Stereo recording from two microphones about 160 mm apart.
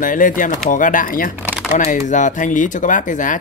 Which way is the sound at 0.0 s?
55° left (ahead or behind).